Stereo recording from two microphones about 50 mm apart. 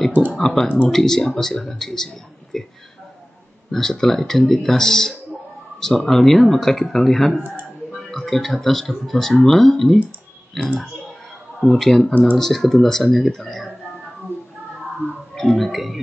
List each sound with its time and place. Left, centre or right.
0.4 s speech: centre
3.7 s speech: centre
12.1 s speech: left
12.4 s speech: centre
15.3 s music: centre